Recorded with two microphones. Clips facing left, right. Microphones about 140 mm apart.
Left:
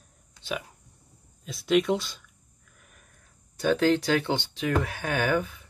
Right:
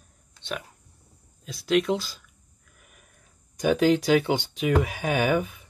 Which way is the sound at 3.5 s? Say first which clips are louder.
Right 2 dB; 15° right (ahead or behind).